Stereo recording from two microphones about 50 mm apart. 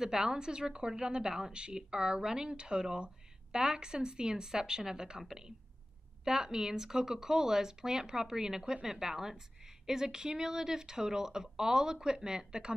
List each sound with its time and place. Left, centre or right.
0.0 s a woman's voice: centre